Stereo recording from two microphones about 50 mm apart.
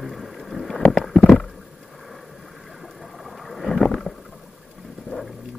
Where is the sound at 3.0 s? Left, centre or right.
Centre.